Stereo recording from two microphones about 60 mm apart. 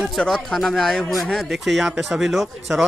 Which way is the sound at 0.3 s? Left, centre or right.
Centre.